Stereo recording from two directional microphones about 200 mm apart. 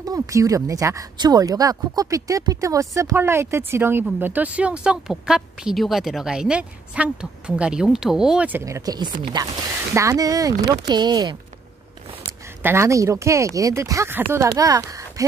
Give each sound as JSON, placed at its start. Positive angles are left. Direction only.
{"t": 0.0, "sound": "speech", "side_deg": -15}